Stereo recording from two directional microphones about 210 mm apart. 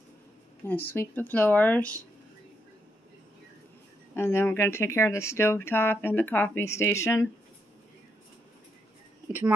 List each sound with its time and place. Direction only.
0.8 s speech: 10° left (ahead or behind)
4.1 s speech: 10° left (ahead or behind)